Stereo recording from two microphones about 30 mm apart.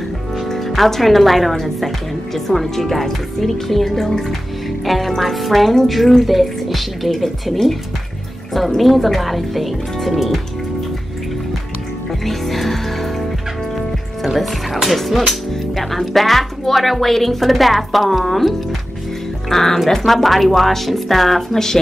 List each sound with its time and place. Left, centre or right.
0.4 s a woman's voice: centre
8.5 s a woman's voice: centre
12.3 s music: centre
15.7 s a woman's voice: centre
19.5 s a woman's voice: centre